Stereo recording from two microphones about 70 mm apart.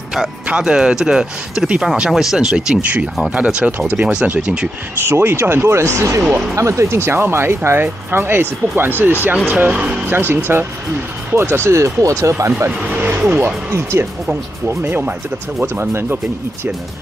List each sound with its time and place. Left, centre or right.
0.1 s speech: centre
5.0 s speech: right; by 10.1 s centre
10.1 s speech: right